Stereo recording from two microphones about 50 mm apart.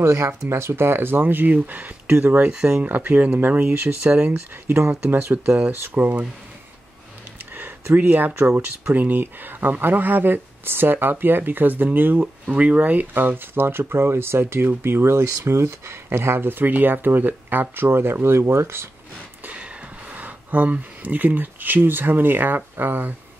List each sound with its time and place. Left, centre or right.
0.0 s speech: right
0.5 s speech: right
2.6 s speech: right
7.5 s a sound: right
8.4 s speech: right
19.5 s a sound: right
20.7 s speech: right